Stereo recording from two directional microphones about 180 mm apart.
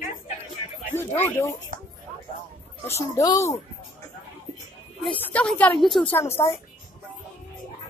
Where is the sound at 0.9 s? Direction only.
10° left (ahead or behind).